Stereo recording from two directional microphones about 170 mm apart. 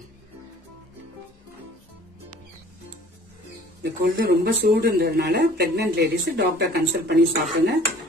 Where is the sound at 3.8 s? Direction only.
65° right (ahead or behind).